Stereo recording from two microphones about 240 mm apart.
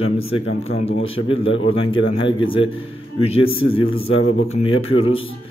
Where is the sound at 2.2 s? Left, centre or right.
Left.